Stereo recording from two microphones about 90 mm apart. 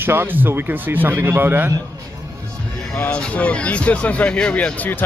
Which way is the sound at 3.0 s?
15° left (ahead or behind).